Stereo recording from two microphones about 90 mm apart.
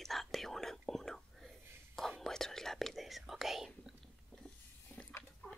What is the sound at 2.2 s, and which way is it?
Speech, 5° left (ahead or behind).